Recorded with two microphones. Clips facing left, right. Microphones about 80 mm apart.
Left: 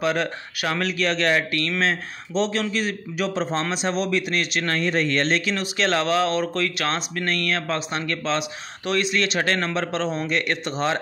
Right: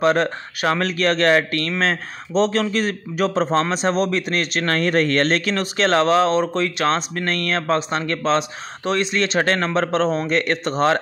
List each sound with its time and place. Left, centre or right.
0.0 s speech: right